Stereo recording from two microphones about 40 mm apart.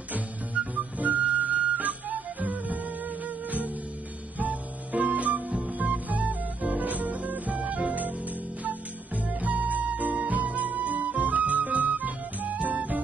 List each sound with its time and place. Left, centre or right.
0.7 s music: right